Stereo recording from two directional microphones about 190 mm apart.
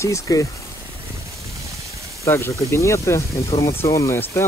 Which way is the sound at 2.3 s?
15° left (ahead or behind).